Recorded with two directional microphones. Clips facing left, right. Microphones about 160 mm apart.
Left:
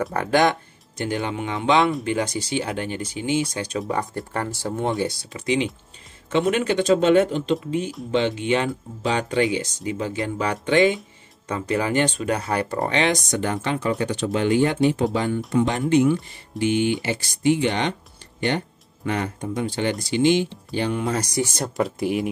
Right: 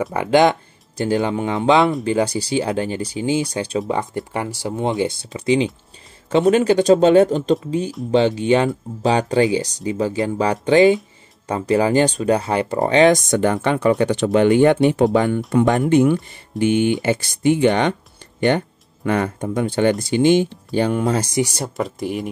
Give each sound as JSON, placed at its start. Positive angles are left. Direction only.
{"t": 0.1, "sound": "speech", "side_deg": -20}
{"t": 5.3, "sound": "speech", "side_deg": -30}
{"t": 13.0, "sound": "speech", "side_deg": -50}
{"t": 19.0, "sound": "speech", "side_deg": -55}
{"t": 21.1, "sound": "speech", "side_deg": -25}
{"t": 21.4, "sound": "speech", "side_deg": -10}